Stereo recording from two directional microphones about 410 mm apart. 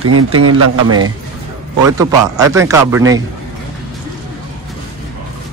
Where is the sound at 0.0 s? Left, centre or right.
Right.